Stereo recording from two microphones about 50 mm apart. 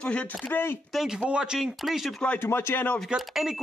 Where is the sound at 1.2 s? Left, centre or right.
Centre.